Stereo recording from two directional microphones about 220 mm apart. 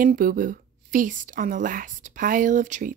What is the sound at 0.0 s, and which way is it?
A woman's voice, 40° right (ahead or behind).